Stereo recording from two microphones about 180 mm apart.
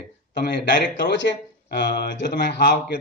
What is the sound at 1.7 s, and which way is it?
Speech, 65° left (ahead or behind).